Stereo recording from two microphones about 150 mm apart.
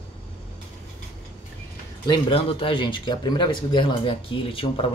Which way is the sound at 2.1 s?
40° left (ahead or behind).